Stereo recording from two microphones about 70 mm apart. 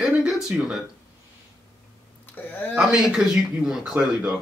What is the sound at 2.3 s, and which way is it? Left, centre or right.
Speech, left.